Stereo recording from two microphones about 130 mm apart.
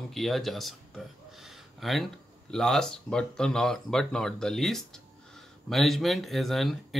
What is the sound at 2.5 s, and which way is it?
Speech, 5° left (ahead or behind).